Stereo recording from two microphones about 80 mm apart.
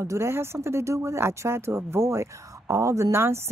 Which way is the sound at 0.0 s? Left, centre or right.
Right.